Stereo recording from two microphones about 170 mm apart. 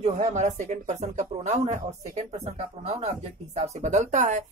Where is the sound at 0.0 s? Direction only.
40° right (ahead or behind).